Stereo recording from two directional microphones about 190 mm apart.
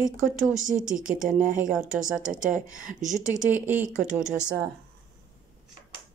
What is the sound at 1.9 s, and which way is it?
Speech, 5° right (ahead or behind).